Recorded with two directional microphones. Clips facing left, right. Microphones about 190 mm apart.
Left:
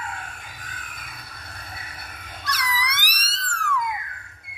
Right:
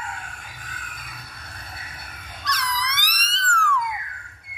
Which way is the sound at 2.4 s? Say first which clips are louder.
Even; 10° left (ahead or behind).